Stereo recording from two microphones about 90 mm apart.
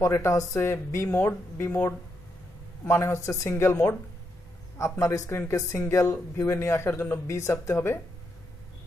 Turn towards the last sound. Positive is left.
turn(degrees=30)  # may be behind; listen again after turning